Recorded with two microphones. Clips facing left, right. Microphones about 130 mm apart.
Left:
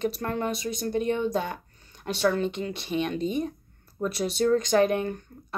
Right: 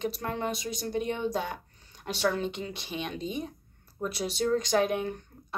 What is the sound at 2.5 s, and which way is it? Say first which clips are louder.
Speech: left 7 dB; 60° left (ahead or behind).